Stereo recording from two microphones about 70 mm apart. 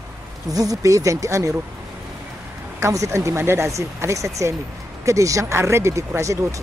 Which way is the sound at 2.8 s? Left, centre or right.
Right.